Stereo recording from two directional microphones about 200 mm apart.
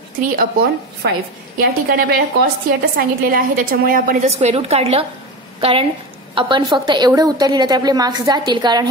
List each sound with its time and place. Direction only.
0.4 s a woman's voice: 50° right (ahead or behind); by 8.8 s 20° right (ahead or behind)